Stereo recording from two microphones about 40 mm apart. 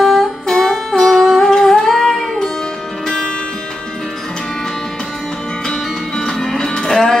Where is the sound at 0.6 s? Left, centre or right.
Centre.